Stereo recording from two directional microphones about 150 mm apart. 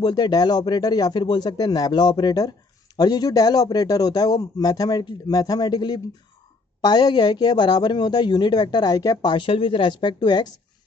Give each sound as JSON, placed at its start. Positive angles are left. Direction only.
{"t": 0.0, "sound": "speech", "side_deg": 25}